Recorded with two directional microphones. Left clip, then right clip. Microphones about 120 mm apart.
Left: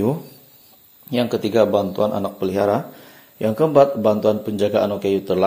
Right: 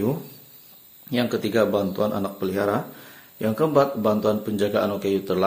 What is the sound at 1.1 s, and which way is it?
A man's voice, 20° left (ahead or behind).